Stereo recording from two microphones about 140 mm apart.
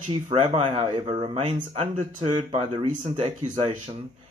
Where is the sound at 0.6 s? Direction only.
40° right (ahead or behind).